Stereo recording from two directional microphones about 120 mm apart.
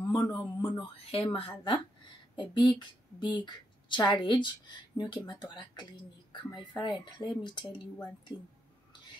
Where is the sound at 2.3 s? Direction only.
40° left (ahead or behind).